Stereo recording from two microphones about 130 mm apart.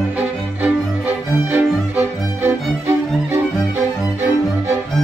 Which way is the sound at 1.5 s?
15° right (ahead or behind).